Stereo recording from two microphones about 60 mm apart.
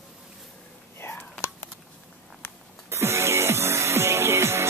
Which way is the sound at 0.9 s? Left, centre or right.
Left.